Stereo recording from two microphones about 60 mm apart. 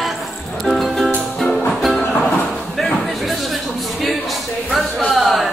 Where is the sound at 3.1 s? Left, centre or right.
Centre.